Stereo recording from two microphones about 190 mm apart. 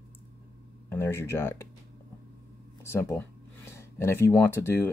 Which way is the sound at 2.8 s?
15° left (ahead or behind).